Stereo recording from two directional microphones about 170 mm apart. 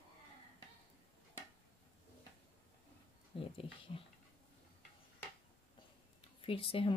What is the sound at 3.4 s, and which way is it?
Dog, 35° left (ahead or behind).